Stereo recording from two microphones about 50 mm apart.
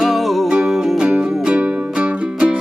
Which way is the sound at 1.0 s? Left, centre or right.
Centre.